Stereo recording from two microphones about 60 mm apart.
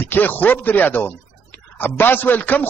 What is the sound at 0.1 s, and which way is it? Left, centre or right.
A man's voice, left.